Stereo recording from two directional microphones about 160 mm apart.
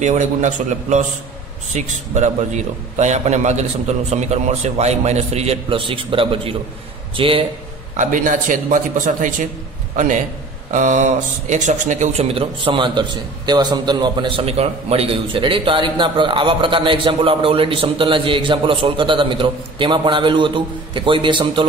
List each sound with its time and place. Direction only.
0.0 s a man's voice: 50° right (ahead or behind); by 7.4 s 35° right (ahead or behind)
7.9 s a man's voice: 50° right (ahead or behind); by 21.6 s 30° right (ahead or behind)